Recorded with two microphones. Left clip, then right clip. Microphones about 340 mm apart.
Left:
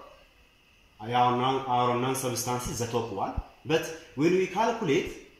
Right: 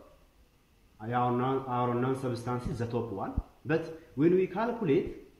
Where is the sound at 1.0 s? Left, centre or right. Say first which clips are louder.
Left 5 dB; centre.